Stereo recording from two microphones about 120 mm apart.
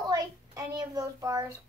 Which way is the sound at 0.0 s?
30° right (ahead or behind).